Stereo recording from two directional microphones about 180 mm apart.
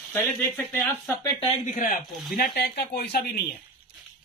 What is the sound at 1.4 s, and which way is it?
Speech, 45° left (ahead or behind).